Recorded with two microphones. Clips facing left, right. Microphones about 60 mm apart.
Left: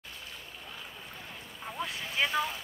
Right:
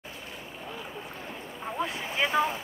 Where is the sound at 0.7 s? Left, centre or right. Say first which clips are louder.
Right 8 dB; centre.